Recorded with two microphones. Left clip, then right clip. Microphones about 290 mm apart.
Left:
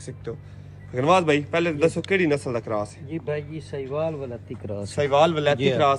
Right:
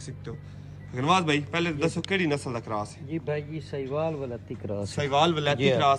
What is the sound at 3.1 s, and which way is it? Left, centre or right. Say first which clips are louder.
Speech: left 1 dB; centre.